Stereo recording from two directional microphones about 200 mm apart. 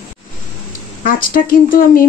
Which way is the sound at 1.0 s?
45° left (ahead or behind).